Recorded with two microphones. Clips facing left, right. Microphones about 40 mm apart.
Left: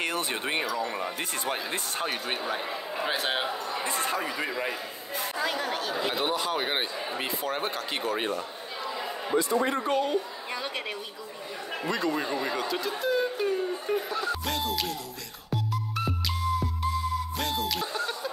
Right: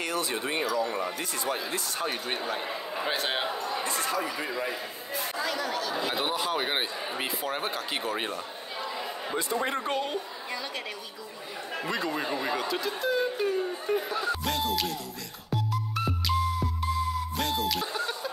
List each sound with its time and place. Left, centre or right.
0.0 s speech: left
0.8 s a man's voice: centre
1.3 s speech: left
2.2 s a man's voice: centre
3.8 s speech: left
4.5 s a man's voice: centre
5.4 s speech: left
6.1 s speech: centre
9.8 s a woman's voice: right
11.8 s speech: centre
15.5 s music: centre